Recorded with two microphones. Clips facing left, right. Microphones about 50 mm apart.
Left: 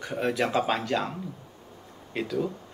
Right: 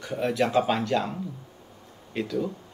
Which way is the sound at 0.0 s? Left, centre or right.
Centre.